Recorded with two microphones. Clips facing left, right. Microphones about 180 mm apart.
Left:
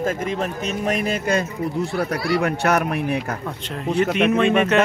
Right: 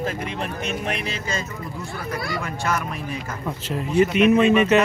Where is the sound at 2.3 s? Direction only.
70° left (ahead or behind).